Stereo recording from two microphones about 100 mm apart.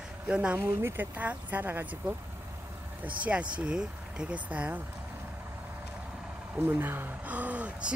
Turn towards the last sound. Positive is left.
turn(degrees=-10)  # may be behind; listen again after turning